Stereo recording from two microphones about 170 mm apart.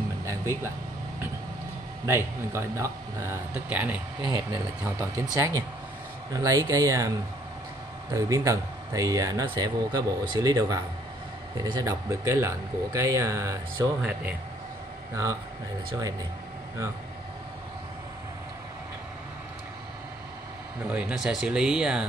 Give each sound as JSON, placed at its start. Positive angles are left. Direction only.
{"t": 2.0, "sound": "a man's voice", "side_deg": -15}
{"t": 4.2, "sound": "a man's voice", "side_deg": -25}
{"t": 15.9, "sound": "speech", "side_deg": -20}
{"t": 20.9, "sound": "speech", "side_deg": -5}